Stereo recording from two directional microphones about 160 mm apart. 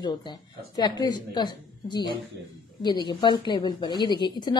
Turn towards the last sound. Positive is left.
turn(degrees=30)  # may be behind; listen again after turning